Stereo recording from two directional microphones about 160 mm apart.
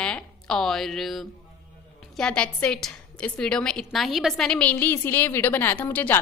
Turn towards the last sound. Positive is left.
turn(degrees=10)  # may be behind; listen again after turning